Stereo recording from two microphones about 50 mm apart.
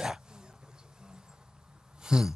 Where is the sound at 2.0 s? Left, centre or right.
Centre.